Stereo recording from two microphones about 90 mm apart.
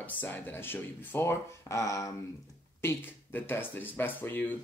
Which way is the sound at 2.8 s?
25° left (ahead or behind).